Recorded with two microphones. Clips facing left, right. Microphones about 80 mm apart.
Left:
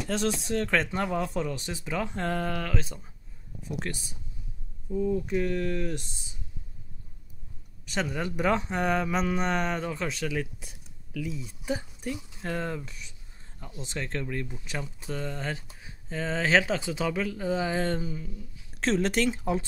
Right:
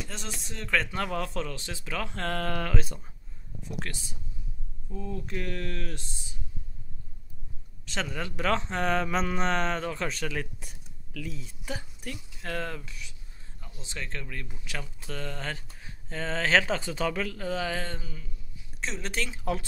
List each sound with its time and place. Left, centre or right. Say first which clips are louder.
0.1 s speech: left 12 dB; left
0.7 s speech: right 3 dB; left
1.0 s speech: left 3 dB; centre
2.5 s speech: right 1 dB; centre
3.9 s speech: left 4 dB; left
4.9 s speech: left 8 dB; centre
7.8 s speech: left 3 dB; centre
11.1 s speech: left 4 dB; centre; by 19.4 s left